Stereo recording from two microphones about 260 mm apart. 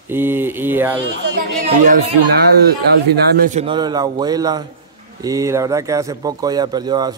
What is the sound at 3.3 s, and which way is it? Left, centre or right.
Speech, right.